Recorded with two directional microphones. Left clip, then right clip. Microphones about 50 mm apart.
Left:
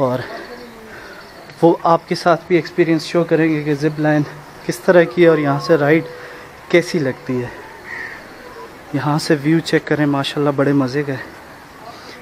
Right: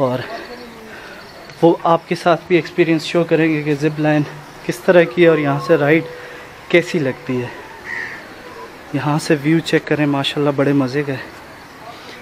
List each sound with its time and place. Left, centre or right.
0.0 s speech: left
1.6 s speech: left
8.9 s speech: left
10.5 s speech: centre